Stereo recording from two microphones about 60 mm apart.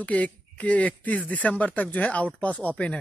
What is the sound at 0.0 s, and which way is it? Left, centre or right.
Speech, left.